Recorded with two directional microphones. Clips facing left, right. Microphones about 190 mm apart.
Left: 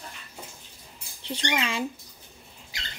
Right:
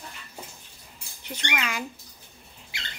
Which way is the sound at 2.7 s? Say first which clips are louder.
Right 1 dB; 40° left (ahead or behind).